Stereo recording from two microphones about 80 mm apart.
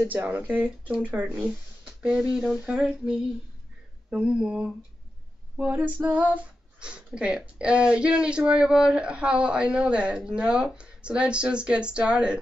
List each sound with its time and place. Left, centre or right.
0.1 s speech: right